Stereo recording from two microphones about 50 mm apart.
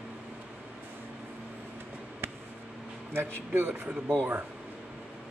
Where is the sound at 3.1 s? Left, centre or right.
Right.